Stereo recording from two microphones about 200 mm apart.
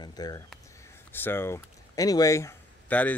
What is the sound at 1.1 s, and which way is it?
Speech, 10° left (ahead or behind).